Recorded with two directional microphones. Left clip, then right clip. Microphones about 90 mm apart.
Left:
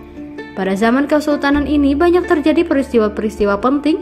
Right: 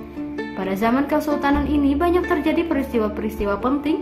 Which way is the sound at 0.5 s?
55° left (ahead or behind).